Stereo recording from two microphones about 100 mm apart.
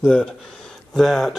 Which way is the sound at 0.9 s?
Centre (ahead or behind).